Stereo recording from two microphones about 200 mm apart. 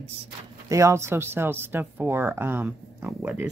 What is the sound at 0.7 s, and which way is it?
Speech, 15° right (ahead or behind).